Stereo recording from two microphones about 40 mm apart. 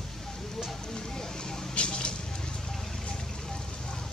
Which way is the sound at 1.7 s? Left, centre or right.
Left.